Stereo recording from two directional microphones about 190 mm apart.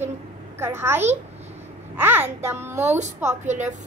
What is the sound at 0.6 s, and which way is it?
A woman's voice, 15° right (ahead or behind).